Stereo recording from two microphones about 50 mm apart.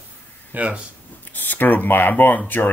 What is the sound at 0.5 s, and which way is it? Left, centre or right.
Speech, right.